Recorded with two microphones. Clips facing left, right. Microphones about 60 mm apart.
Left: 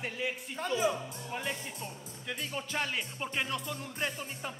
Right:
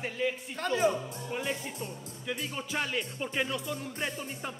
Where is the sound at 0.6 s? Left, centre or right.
Right.